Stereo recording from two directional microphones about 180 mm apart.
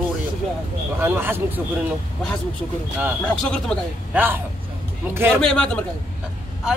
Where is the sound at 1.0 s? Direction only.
10° right (ahead or behind).